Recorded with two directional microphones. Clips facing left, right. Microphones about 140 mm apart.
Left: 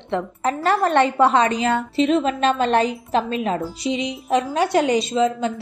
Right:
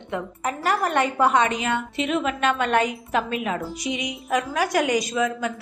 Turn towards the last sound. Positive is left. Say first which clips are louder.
# left 5 dB
turn(degrees=30)  # may be behind; listen again after turning